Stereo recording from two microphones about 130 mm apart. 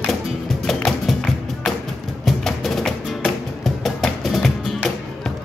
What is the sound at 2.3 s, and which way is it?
Music, centre (ahead or behind).